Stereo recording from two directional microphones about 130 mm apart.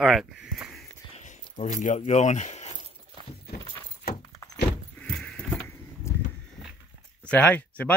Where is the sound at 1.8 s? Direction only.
60° left (ahead or behind).